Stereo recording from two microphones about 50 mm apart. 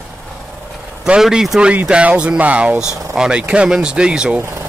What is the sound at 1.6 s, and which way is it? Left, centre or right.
Speech, right.